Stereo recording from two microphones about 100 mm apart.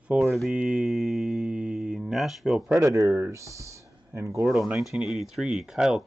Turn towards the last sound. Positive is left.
turn(degrees=-5)  # may be behind; listen again after turning